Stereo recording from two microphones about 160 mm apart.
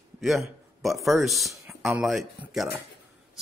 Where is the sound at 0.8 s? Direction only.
Centre (ahead or behind).